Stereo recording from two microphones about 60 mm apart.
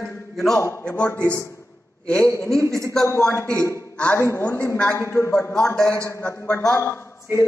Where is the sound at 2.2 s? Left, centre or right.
Left.